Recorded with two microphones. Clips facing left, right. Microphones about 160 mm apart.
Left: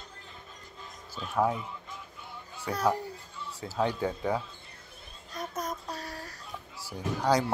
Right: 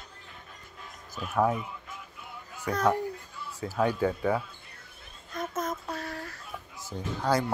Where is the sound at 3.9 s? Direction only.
15° left (ahead or behind).